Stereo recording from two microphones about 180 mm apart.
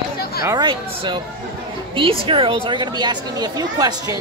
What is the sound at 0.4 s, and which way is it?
A woman's voice, 20° right (ahead or behind).